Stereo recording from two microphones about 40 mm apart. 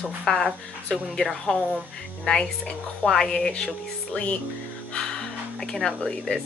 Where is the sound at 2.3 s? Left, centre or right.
Centre.